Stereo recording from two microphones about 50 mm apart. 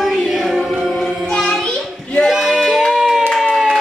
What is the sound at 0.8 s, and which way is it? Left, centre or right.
Music, centre.